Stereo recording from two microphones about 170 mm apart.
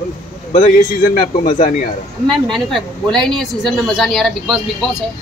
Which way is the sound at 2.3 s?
Centre (ahead or behind).